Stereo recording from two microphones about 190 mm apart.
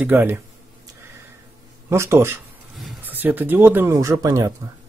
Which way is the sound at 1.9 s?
15° right (ahead or behind).